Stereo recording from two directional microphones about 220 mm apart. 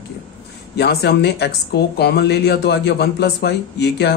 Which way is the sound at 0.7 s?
50° left (ahead or behind).